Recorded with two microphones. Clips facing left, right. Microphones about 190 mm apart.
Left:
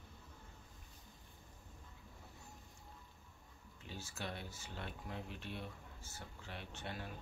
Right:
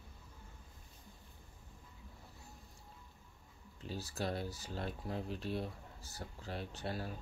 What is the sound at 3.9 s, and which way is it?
Speech, 35° right (ahead or behind).